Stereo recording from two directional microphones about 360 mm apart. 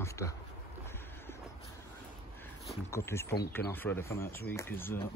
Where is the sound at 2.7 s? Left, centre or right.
Centre.